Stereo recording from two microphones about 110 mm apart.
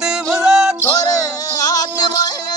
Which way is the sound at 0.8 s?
35° left (ahead or behind).